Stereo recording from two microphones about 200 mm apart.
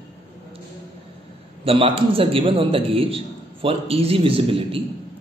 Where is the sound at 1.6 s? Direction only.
25° right (ahead or behind).